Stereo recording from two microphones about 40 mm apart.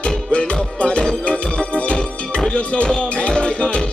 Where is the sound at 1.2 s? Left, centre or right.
Left.